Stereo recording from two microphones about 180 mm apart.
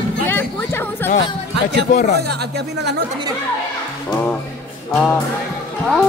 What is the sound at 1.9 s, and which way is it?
Speech, 40° left (ahead or behind).